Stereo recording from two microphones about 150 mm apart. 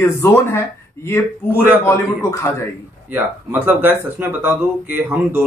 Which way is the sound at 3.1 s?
15° right (ahead or behind).